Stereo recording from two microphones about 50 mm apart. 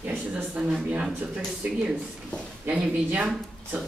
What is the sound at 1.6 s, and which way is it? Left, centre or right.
Speech, right.